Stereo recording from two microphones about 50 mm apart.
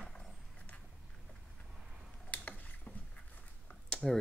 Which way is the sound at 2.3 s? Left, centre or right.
Left.